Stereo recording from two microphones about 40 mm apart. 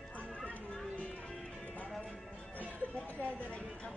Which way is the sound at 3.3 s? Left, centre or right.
Left.